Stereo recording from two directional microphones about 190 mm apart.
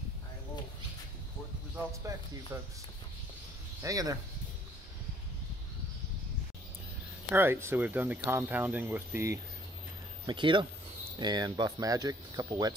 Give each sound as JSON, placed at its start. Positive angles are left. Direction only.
{"t": 1.8, "sound": "speech", "side_deg": -15}
{"t": 3.8, "sound": "speech", "side_deg": -20}
{"t": 7.2, "sound": "speech", "side_deg": -10}
{"t": 10.2, "sound": "speech", "side_deg": -25}